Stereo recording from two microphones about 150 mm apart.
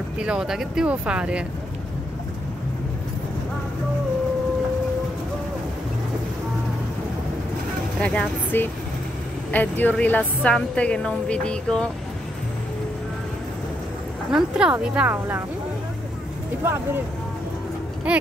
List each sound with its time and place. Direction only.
0.2 s speech: 5° right (ahead or behind)
8.0 s a woman's voice: 10° left (ahead or behind)
14.3 s speech: 5° right (ahead or behind)
16.6 s speech: 15° right (ahead or behind)
18.1 s speech: 10° right (ahead or behind)